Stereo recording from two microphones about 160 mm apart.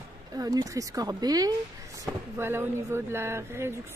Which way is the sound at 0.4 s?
20° right (ahead or behind).